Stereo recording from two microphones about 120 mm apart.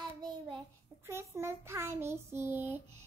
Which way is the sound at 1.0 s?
20° right (ahead or behind).